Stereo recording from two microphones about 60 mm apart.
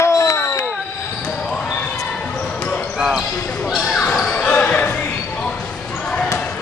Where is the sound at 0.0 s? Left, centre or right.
Left.